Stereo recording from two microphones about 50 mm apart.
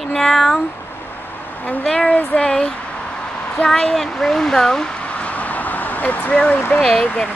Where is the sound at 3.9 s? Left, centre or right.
Centre; by 6.1 s left.